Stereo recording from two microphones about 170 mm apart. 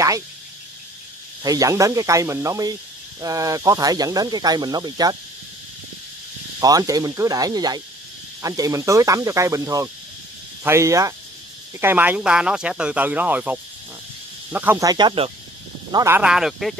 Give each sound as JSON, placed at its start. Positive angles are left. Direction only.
{"t": 1.4, "sound": "speech", "side_deg": -20}
{"t": 6.6, "sound": "speech", "side_deg": -20}
{"t": 15.9, "sound": "speech", "side_deg": -20}
{"t": 16.2, "sound": "speech", "side_deg": -5}